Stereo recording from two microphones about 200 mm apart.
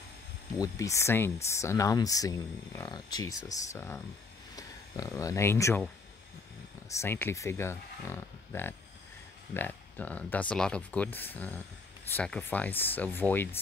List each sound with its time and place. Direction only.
0.6 s speech: 15° left (ahead or behind)
6.9 s speech: 10° left (ahead or behind)